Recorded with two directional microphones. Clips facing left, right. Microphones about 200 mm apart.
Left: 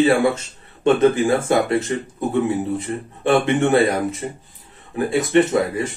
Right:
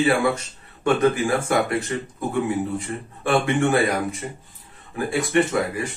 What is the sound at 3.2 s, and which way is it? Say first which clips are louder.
Speech: left 3 dB; 25° left (ahead or behind).